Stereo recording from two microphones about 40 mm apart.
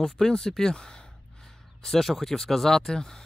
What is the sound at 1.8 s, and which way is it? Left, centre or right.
Speech, centre.